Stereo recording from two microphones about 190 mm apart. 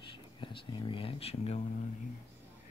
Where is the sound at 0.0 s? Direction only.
25° left (ahead or behind).